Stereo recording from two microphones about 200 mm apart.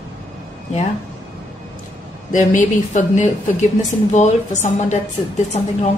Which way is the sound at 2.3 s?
40° left (ahead or behind).